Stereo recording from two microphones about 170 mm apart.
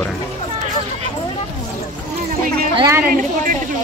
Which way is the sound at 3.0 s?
55° right (ahead or behind).